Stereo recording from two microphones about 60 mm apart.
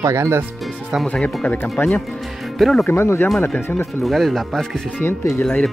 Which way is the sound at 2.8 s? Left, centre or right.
Left.